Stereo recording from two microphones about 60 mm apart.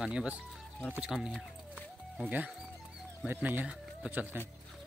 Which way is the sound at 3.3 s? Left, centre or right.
Right.